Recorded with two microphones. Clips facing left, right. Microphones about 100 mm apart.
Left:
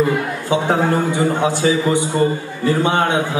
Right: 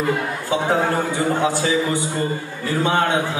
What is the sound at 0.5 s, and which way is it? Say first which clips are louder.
A man's voice: left 3 dB; 20° left (ahead or behind).